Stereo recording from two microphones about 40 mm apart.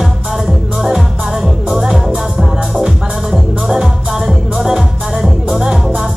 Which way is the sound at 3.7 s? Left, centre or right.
Centre.